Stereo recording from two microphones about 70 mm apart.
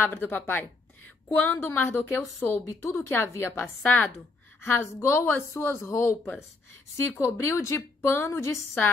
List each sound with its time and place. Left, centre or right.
0.0 s a woman's voice: left
2.6 s a woman's voice: left
4.6 s a woman's voice: left